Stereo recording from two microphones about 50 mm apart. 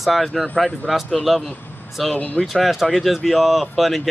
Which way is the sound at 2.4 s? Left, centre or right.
Centre.